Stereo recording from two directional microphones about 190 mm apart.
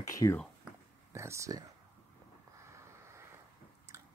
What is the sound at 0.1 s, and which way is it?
Speech, 15° left (ahead or behind).